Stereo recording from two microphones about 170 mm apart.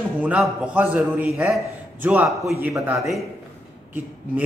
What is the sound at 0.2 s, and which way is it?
A man's voice, 5° right (ahead or behind).